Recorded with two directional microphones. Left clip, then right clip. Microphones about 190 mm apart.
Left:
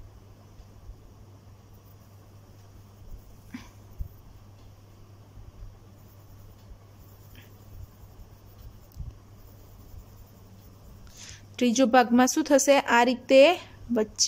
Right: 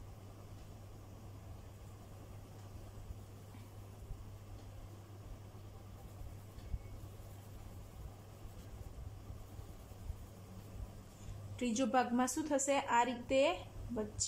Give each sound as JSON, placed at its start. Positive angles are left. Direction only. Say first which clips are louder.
{"t": 11.5, "sound": "a woman's voice", "louder": "left 14 dB", "side_deg": 40}